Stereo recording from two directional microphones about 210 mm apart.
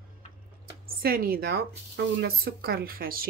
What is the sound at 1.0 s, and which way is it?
Speech, 45° right (ahead or behind).